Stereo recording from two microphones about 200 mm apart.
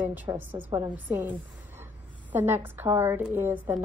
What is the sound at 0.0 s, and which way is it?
Speech, 10° right (ahead or behind).